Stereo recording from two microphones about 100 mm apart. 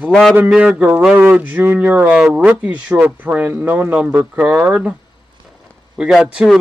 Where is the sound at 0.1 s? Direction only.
5° left (ahead or behind).